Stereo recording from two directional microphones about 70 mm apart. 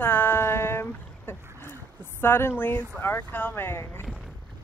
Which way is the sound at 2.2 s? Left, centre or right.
Left.